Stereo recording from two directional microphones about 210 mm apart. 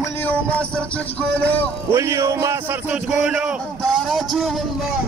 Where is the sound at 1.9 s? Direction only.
15° right (ahead or behind).